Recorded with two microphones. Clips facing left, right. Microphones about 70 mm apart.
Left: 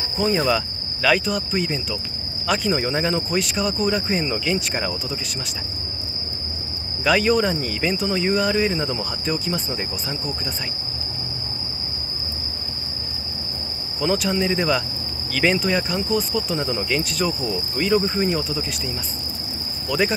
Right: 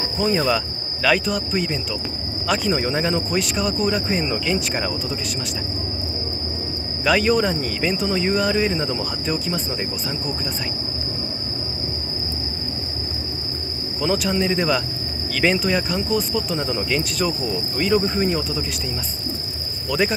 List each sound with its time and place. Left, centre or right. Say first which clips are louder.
0.2 s speech: even; centre
7.1 s speech: even; centre
13.9 s speech: even; centre
19.9 s speech: even; centre